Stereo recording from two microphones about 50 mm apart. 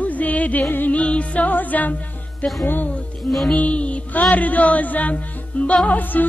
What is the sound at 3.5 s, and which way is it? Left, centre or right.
Music, left.